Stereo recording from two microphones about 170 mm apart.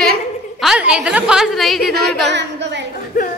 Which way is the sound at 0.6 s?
5° right (ahead or behind).